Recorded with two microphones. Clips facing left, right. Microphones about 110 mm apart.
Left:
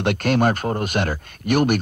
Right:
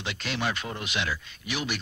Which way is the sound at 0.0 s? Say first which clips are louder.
Left 13 dB; 55° left (ahead or behind).